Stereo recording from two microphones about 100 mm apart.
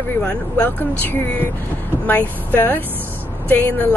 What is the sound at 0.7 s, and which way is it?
A woman's voice, 20° left (ahead or behind).